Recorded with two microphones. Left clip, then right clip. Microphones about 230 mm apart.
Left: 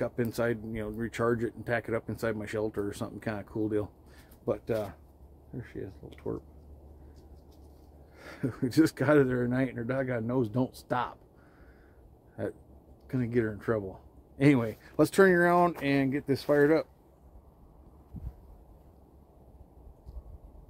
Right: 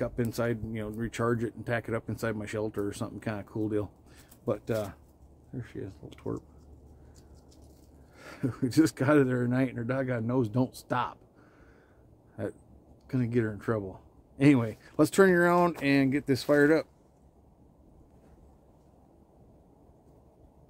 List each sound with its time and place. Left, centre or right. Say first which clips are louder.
0.0 s speech: left 1 dB; centre
8.2 s speech: right 1 dB; centre
12.4 s speech: left 1 dB; centre